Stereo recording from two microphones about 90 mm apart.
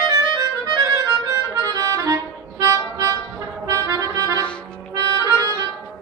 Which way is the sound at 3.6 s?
40° right (ahead or behind).